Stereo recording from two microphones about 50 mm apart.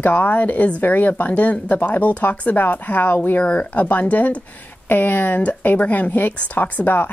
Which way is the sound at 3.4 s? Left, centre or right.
Left.